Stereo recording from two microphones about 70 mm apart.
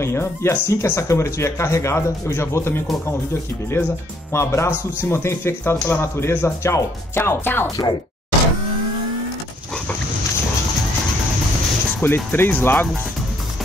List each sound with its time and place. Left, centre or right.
0.0 s a man's voice: left
12.0 s a man's voice: left